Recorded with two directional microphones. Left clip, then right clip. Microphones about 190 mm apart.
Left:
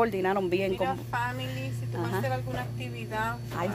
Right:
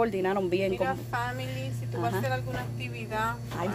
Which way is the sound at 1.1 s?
45° right (ahead or behind).